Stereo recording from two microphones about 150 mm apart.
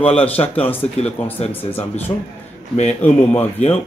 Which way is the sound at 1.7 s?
45° left (ahead or behind).